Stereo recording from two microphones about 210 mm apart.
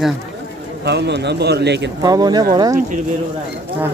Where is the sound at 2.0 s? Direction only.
20° right (ahead or behind).